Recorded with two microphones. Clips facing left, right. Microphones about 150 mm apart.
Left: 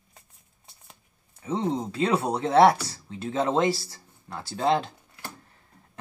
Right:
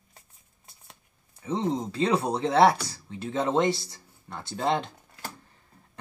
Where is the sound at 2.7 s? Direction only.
30° left (ahead or behind).